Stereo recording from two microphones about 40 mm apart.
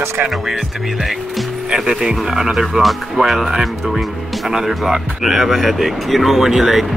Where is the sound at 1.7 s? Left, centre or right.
Centre.